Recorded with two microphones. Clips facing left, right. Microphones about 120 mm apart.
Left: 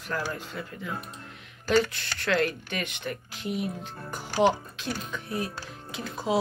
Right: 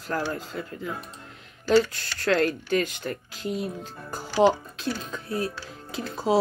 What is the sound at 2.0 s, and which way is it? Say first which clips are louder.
Speech: right 3 dB; 40° right (ahead or behind).